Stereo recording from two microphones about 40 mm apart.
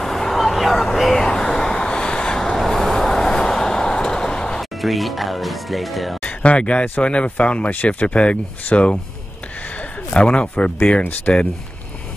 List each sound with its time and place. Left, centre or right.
0.0 s vehicle: centre
1.2 s vehicle: centre
4.6 s speech: centre
6.4 s speech: left
8.7 s speech: left
10.1 s speech: left